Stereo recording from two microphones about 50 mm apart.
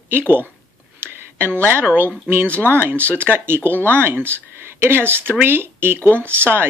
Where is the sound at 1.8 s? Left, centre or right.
Right.